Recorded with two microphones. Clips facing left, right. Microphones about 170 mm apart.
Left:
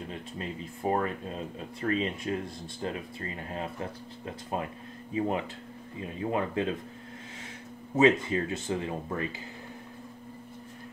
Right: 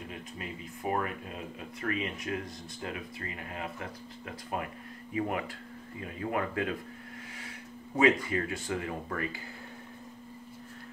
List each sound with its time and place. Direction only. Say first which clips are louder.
0.1 s speech: left 4 dB; 30° left (ahead or behind)
7.9 s speech: left 3 dB; 25° left (ahead or behind)